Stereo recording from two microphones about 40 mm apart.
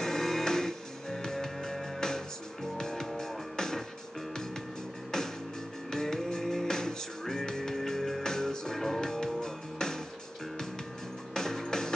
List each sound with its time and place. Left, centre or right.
0.0 s music: centre
5.1 s music: centre
11.3 s music: centre